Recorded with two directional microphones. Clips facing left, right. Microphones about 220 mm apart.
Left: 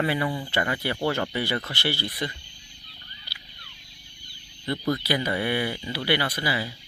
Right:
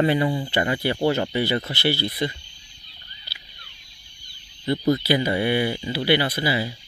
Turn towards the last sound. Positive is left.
turn(degrees=-15)  # may be behind; listen again after turning